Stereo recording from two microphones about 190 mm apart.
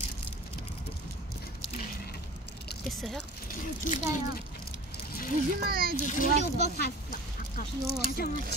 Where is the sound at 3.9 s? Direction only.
45° left (ahead or behind).